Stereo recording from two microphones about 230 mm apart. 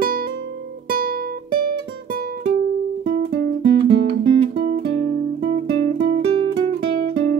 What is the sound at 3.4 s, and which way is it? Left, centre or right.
Music, right.